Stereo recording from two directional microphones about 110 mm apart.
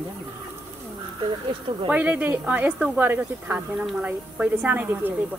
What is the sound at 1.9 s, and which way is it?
Speech, 15° right (ahead or behind).